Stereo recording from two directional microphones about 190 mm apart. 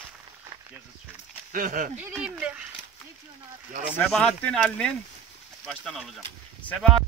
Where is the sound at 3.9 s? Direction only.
5° left (ahead or behind).